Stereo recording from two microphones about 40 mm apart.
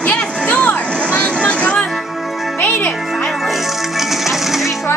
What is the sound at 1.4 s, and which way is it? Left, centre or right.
Music, left.